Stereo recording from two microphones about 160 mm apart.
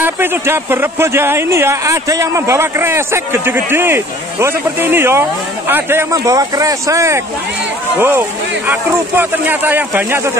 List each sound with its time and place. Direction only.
0.0 s speech: 15° right (ahead or behind)